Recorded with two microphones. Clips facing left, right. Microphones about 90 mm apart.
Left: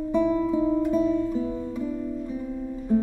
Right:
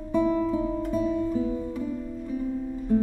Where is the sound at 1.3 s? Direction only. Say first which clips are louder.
Right 1 dB; 20° left (ahead or behind).